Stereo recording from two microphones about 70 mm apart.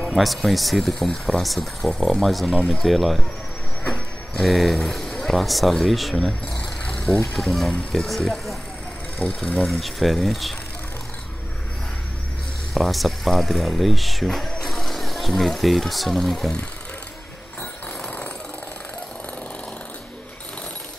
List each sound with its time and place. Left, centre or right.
0.1 s speech: centre
2.5 s speech: centre
2.8 s speech: centre
4.3 s speech: centre
6.5 s a sound: centre
7.3 s speech: centre
9.2 s speech: centre
9.7 s speech: centre
12.7 s speech: centre
18.0 s jackhammer: left